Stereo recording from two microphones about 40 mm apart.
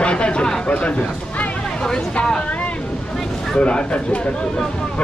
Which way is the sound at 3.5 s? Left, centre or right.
Left.